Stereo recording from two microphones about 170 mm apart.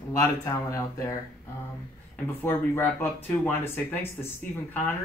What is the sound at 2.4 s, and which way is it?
Speech, 15° left (ahead or behind).